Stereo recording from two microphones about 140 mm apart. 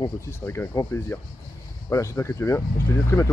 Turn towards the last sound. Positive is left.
turn(degrees=20)  # may be behind; listen again after turning